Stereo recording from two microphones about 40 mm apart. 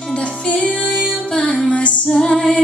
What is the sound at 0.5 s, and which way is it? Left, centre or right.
Music, left.